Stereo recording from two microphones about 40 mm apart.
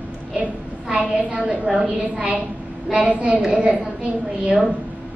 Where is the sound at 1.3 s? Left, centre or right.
Right.